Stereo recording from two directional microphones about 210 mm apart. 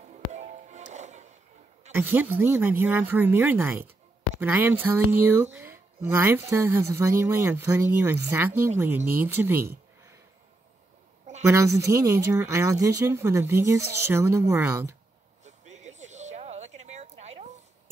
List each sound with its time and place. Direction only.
0.1 s music: 35° right (ahead or behind)
1.9 s speech: 10° right (ahead or behind)
11.4 s speech: 15° right (ahead or behind)
15.4 s a sound: 35° right (ahead or behind)